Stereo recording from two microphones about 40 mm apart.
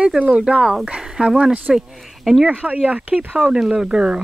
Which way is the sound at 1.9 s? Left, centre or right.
Centre.